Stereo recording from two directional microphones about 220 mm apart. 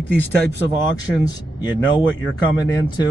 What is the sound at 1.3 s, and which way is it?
Speech, 20° left (ahead or behind).